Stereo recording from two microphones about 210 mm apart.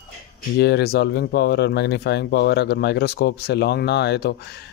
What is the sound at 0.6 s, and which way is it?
Speech, 50° left (ahead or behind).